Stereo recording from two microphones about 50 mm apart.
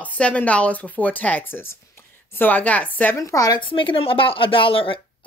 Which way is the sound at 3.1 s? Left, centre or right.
Left.